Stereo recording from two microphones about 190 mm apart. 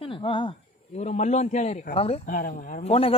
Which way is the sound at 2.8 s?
30° left (ahead or behind).